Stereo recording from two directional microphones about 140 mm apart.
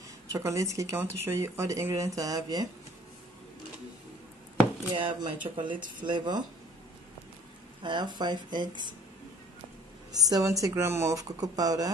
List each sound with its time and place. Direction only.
0.3 s speech: 20° right (ahead or behind)
4.9 s speech: 35° right (ahead or behind)
7.8 s speech: 35° right (ahead or behind)
10.1 s speech: 25° right (ahead or behind)